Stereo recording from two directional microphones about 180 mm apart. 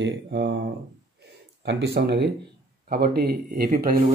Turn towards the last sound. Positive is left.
turn(degrees=-55)  # may be behind; listen again after turning